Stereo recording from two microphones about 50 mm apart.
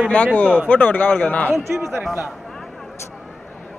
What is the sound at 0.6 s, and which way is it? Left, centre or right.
Speech, left.